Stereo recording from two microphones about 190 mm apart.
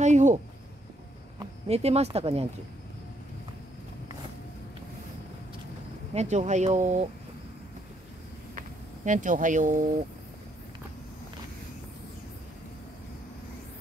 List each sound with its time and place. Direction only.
0.0 s speech: 40° right (ahead or behind)
1.7 s speech: 35° right (ahead or behind)
6.1 s speech: 40° right (ahead or behind)
8.5 s speech: 40° right (ahead or behind)